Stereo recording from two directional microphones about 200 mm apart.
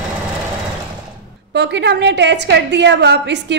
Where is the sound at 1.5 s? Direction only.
60° right (ahead or behind).